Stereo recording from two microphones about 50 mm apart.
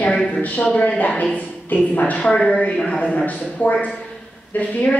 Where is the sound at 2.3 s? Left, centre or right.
Centre.